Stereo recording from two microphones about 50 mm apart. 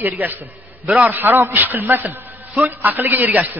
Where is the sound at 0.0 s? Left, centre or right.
Right.